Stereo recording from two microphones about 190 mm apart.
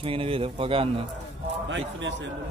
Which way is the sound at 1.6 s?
75° right (ahead or behind).